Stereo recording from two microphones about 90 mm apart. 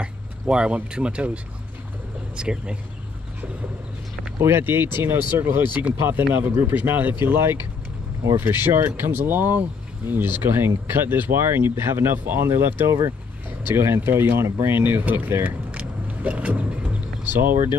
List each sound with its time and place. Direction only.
0.0 s speech: 10° right (ahead or behind)
4.4 s speech: 25° right (ahead or behind)